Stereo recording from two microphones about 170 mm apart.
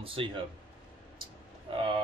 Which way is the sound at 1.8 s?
30° right (ahead or behind).